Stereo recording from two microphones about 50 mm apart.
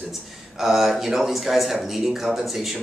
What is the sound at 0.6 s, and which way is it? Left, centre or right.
Speech, centre.